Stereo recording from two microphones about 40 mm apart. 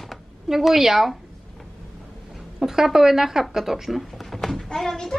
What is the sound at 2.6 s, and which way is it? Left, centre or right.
Speech, centre.